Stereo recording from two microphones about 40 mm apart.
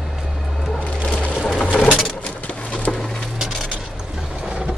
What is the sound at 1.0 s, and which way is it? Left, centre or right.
Crushing, left.